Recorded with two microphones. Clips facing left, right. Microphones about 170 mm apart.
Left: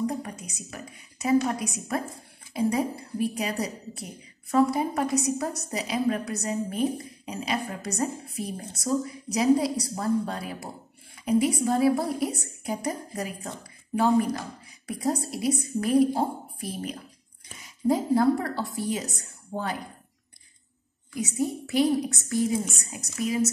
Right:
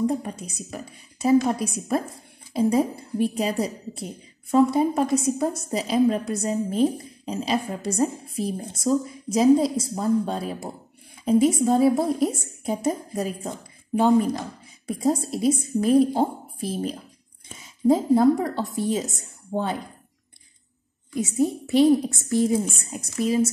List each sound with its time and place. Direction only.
0.2 s a woman's voice: 30° right (ahead or behind)
13.9 s a woman's voice: 20° right (ahead or behind)
21.1 s a woman's voice: 25° right (ahead or behind)